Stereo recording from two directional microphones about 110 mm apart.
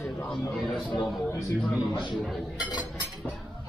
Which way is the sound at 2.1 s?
Centre (ahead or behind).